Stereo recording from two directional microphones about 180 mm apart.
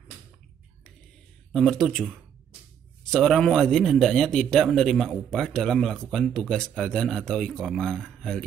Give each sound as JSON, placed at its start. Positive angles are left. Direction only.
{"t": 1.5, "sound": "speech", "side_deg": 5}
{"t": 3.1, "sound": "speech", "side_deg": 0}